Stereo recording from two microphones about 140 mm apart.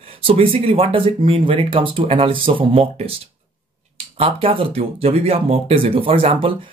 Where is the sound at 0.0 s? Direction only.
40° right (ahead or behind).